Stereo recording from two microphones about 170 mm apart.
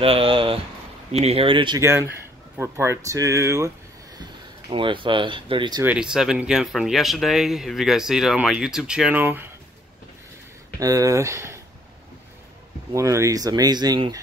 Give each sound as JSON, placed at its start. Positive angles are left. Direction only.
{"t": 0.0, "sound": "speech", "side_deg": -35}
{"t": 1.8, "sound": "speech", "side_deg": -15}
{"t": 4.2, "sound": "speech", "side_deg": -25}
{"t": 5.9, "sound": "speech", "side_deg": -5}
{"t": 10.8, "sound": "speech", "side_deg": -20}
{"t": 12.9, "sound": "speech", "side_deg": -20}